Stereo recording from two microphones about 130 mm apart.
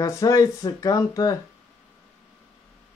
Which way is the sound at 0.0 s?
25° left (ahead or behind).